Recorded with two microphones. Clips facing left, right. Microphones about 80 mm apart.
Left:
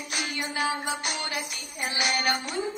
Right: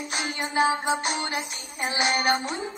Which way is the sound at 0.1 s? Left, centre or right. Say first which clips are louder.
Right 3 dB; right.